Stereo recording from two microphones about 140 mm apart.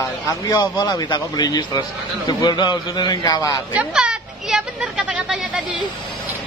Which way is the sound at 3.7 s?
10° right (ahead or behind).